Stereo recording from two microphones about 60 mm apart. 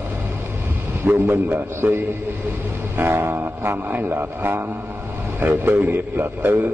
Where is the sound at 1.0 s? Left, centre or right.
Right.